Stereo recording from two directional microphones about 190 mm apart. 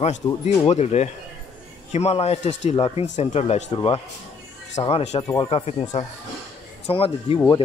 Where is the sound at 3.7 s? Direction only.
25° left (ahead or behind).